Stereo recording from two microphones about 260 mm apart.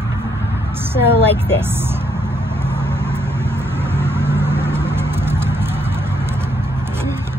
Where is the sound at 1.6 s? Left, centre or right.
Centre.